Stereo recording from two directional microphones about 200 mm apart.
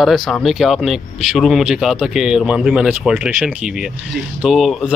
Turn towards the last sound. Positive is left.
turn(degrees=0)  # may be behind; listen again after turning